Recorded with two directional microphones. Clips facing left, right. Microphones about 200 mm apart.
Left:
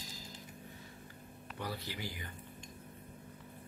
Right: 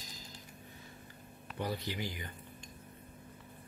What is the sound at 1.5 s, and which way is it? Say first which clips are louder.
Speech: right 5 dB; 20° right (ahead or behind).